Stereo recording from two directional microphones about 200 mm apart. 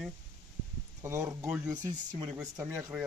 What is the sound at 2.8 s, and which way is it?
Speech, 5° right (ahead or behind).